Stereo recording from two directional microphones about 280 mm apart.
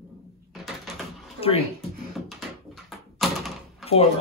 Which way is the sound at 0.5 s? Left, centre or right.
Centre.